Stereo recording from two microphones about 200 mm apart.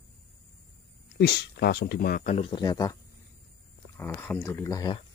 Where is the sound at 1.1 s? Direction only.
55° left (ahead or behind); by 3.0 s 20° left (ahead or behind).